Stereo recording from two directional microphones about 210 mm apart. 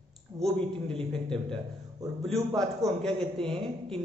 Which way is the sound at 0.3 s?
20° right (ahead or behind).